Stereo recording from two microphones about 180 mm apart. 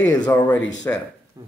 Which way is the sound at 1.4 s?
20° right (ahead or behind).